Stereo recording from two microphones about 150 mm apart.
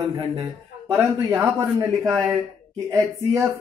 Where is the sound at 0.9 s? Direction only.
15° right (ahead or behind).